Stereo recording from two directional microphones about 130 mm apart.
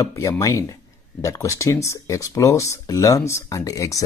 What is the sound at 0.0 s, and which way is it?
Speech, 25° left (ahead or behind).